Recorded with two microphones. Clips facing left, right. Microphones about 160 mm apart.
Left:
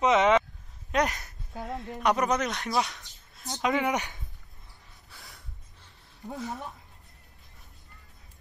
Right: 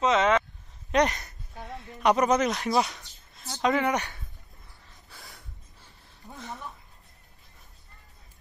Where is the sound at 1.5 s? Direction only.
90° left.